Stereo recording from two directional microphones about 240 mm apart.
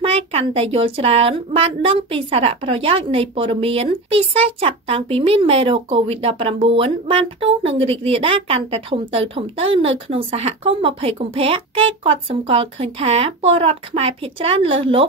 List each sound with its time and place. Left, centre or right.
0.0 s a woman's voice: right